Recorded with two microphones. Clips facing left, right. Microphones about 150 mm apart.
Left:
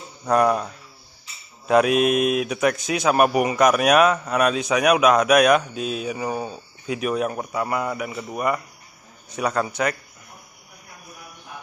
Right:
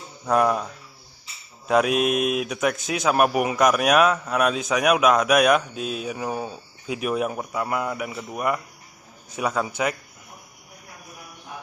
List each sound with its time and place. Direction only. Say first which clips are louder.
0.2 s speech: left 2 dB; centre (ahead or behind)
1.7 s speech: left 3 dB; centre (ahead or behind)